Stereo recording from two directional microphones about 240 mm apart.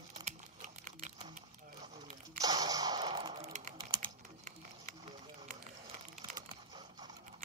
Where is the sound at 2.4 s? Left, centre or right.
Centre.